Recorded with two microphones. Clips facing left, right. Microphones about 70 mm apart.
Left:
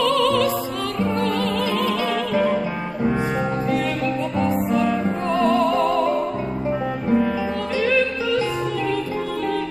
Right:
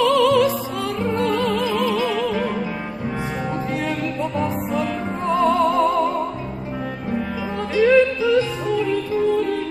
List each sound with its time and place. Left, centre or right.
0.0 s music: centre
2.3 s music: centre
5.3 s music: centre
7.7 s music: centre